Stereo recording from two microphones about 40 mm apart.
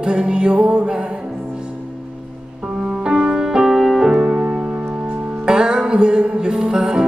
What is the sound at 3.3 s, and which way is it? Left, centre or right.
Music, centre.